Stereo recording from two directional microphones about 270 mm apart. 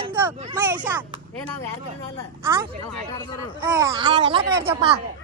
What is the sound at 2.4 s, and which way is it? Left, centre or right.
Speech, centre.